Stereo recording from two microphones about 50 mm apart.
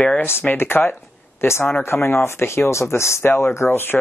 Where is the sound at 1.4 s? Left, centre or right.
Left.